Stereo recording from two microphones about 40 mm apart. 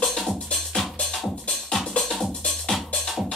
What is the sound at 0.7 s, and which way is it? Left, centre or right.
Music, centre.